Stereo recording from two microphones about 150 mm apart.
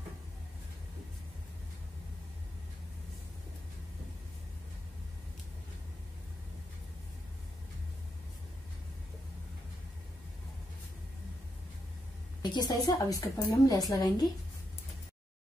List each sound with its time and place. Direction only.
12.4 s a woman's voice: 30° left (ahead or behind)